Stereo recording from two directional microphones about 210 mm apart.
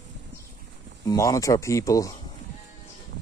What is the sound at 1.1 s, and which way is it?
Speech, 15° left (ahead or behind).